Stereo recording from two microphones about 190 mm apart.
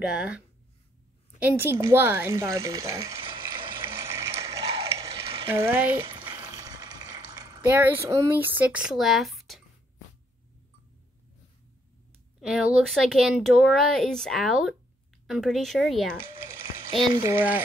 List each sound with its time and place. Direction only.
0.0 s speech: 5° right (ahead or behind)
1.4 s speech: 10° right (ahead or behind)
3.2 s water: 25° right (ahead or behind)
4.0 s water: 15° right (ahead or behind)
4.5 s mechanisms: 30° right (ahead or behind)
5.5 s speech: 10° right (ahead or behind)
5.9 s boiling: 25° right (ahead or behind)
7.7 s speech: 10° right (ahead or behind)
12.4 s speech: centre (ahead or behind)
16.2 s a sound: 10° right (ahead or behind)
16.9 s speech: 25° right (ahead or behind)